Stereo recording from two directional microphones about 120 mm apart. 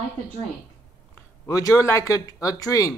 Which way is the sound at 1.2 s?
30° left (ahead or behind).